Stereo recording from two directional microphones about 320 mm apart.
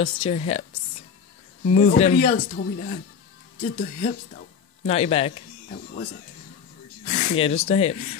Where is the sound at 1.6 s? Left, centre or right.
Left.